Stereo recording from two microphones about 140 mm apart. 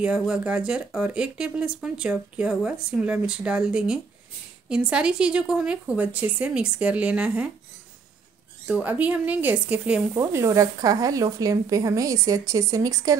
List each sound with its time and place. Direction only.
0.0 s speech: 5° right (ahead or behind)
8.6 s speech: 10° right (ahead or behind)
10.1 s speech: 20° right (ahead or behind)